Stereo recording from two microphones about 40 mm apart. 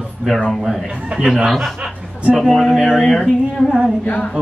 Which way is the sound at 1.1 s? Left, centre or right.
Right.